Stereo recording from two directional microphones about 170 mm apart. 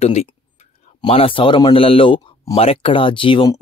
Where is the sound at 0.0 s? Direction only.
40° left (ahead or behind).